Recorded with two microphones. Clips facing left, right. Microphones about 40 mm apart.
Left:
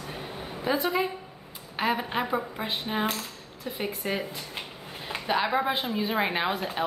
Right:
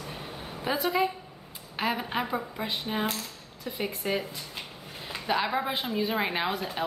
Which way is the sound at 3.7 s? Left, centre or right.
Centre.